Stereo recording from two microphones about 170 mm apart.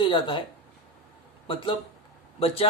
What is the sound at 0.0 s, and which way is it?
Speech, 30° left (ahead or behind).